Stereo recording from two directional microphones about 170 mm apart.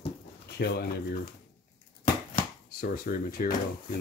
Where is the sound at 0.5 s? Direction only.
70° left (ahead or behind).